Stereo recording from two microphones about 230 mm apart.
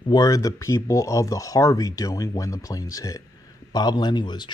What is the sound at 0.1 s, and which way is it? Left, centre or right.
Speech, centre.